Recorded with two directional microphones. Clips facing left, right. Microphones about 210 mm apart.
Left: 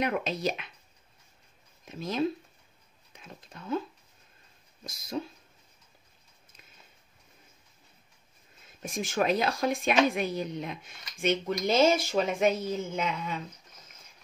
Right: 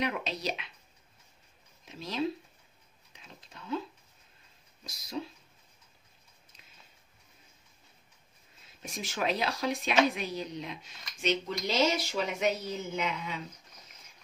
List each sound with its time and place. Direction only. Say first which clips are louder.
0.0 s speech: left 4 dB; 50° left (ahead or behind)
1.9 s speech: left 3 dB; 50° left (ahead or behind)
4.8 s speech: left 3 dB; 50° left (ahead or behind)
8.8 s speech: left 5 dB; 50° left (ahead or behind)